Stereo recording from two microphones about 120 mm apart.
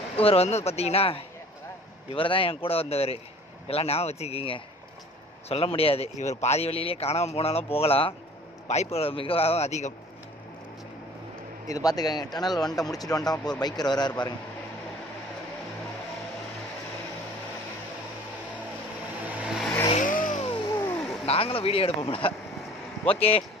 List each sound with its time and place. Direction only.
0.2 s a man's voice: 55° left (ahead or behind)
11.6 s speech: 30° left (ahead or behind)
19.2 s vehicle: 10° right (ahead or behind)
19.9 s vehicle: 90° left
21.3 s a man's voice: 50° left (ahead or behind)